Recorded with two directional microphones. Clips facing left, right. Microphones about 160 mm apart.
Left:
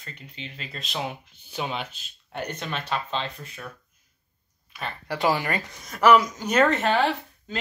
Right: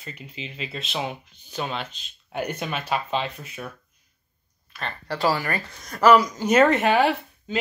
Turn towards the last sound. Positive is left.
turn(degrees=-10)  # may be behind; listen again after turning